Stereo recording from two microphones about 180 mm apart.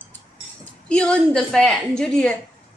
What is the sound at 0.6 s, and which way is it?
A woman's voice, 5° left (ahead or behind).